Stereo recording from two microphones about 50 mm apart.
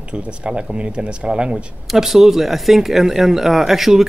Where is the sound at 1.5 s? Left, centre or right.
Centre.